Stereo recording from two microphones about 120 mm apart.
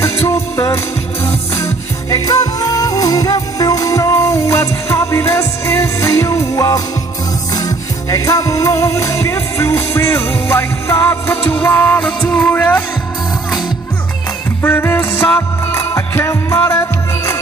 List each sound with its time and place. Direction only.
0.0 s music: 25° left (ahead or behind)
14.6 s music: 20° left (ahead or behind)